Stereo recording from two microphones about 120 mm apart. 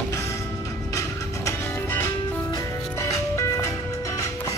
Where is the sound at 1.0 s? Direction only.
25° left (ahead or behind).